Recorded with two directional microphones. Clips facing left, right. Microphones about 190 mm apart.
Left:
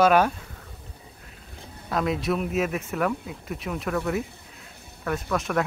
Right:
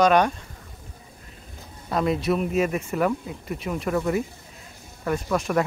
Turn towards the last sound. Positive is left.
turn(degrees=0)  # may be behind; listen again after turning